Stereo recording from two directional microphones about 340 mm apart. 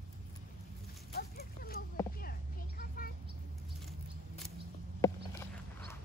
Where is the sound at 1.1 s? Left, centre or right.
Left.